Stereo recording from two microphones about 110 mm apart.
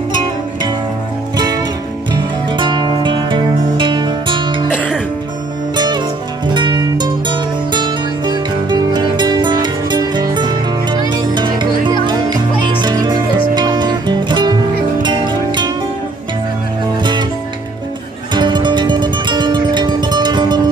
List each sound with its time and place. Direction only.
1.3 s music: 40° right (ahead or behind)
4.6 s music: 15° left (ahead or behind)
5.8 s music: 45° right (ahead or behind)
17.0 s music: 45° right (ahead or behind)
18.3 s music: 45° right (ahead or behind)